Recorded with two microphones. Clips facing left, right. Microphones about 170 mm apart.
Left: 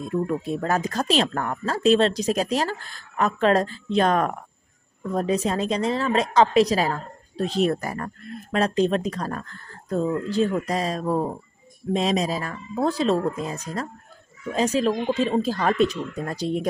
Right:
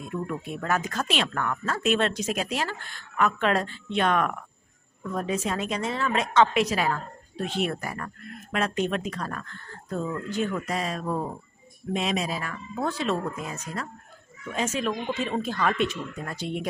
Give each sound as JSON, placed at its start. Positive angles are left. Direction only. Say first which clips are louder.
{"t": 0.0, "sound": "a woman's voice", "louder": "left 7 dB", "side_deg": 30}